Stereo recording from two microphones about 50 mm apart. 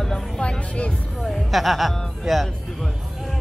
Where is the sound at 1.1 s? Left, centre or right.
Centre.